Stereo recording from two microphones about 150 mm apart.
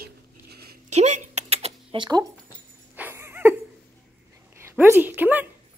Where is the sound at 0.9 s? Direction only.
50° right (ahead or behind); by 2.2 s 30° right (ahead or behind).